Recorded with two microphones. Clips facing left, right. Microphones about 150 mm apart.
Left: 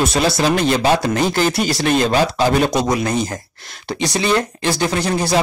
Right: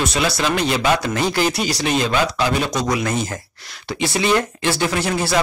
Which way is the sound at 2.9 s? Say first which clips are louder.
Left 2 dB; 35° left (ahead or behind).